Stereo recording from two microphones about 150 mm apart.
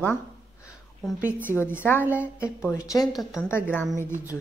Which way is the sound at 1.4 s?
15° left (ahead or behind).